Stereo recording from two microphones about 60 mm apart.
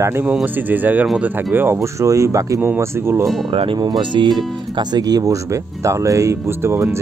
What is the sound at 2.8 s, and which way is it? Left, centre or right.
Speech, right.